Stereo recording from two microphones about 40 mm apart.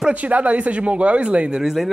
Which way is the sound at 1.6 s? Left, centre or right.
Centre.